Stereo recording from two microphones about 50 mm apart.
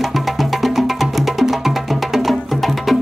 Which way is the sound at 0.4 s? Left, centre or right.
Centre.